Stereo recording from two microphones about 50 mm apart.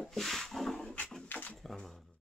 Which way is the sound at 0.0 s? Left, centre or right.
Centre.